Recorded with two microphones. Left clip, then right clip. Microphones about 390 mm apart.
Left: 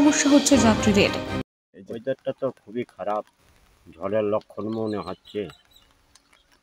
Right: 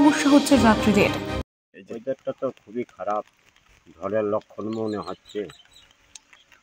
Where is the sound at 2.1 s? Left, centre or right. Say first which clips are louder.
Left 1 dB; left.